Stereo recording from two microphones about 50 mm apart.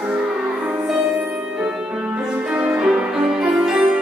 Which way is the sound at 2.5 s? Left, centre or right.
Right.